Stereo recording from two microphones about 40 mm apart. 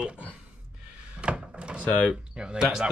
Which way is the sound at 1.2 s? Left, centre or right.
Right.